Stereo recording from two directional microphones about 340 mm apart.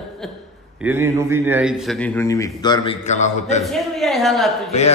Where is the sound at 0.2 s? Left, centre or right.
Centre.